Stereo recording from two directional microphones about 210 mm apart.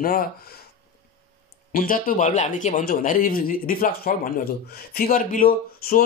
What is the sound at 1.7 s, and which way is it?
Speech, 40° left (ahead or behind).